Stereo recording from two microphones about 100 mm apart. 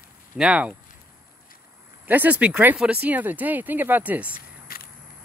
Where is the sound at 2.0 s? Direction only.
15° right (ahead or behind).